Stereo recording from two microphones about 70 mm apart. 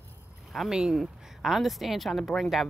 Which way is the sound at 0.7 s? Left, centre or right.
Centre.